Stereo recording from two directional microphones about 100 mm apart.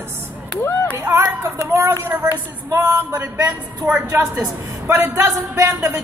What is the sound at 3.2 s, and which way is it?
A woman's voice, 15° right (ahead or behind).